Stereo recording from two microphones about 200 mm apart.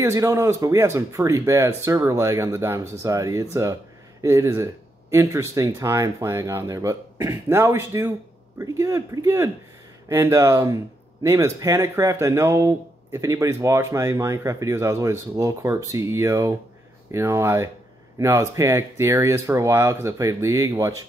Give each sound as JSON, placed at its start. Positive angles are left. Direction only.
{"t": 0.0, "sound": "speech", "side_deg": -15}